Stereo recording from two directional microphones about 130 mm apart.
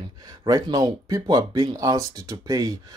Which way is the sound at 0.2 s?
30° right (ahead or behind).